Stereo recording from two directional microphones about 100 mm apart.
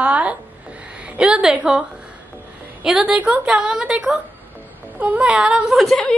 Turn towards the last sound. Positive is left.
turn(degrees=0)  # may be behind; listen again after turning